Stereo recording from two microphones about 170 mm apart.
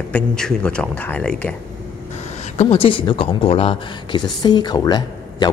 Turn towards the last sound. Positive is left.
turn(degrees=25)  # may be behind; listen again after turning